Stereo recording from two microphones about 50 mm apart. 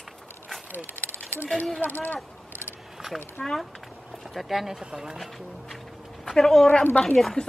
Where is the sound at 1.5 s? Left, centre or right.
Centre.